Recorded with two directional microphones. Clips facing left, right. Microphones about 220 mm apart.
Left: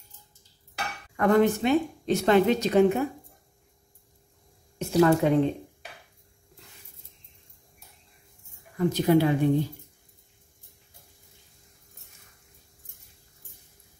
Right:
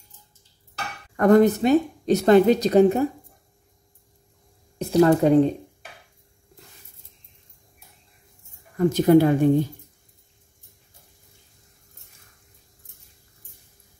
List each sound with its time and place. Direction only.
1.1 s a woman's voice: 45° right (ahead or behind)
4.7 s speech: 35° right (ahead or behind)
8.7 s speech: 45° right (ahead or behind)